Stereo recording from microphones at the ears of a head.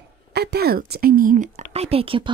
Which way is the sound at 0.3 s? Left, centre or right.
Right.